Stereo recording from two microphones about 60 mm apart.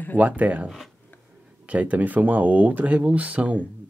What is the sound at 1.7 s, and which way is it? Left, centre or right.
Speech, right.